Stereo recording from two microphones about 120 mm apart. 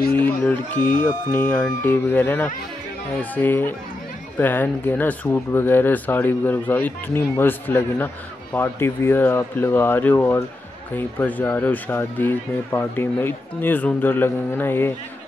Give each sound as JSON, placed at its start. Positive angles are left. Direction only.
{"t": 0.2, "sound": "speech", "side_deg": 15}